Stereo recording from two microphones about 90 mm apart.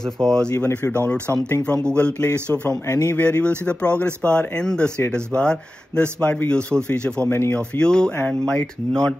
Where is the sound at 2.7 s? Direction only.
40° left (ahead or behind).